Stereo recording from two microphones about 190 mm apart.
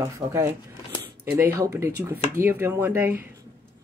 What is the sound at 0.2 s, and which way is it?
Speech, 15° right (ahead or behind).